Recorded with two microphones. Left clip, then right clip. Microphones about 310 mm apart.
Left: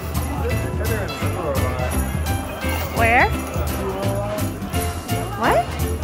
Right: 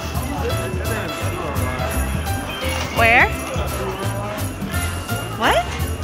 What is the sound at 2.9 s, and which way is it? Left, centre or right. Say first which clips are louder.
Speech: right 2 dB; centre.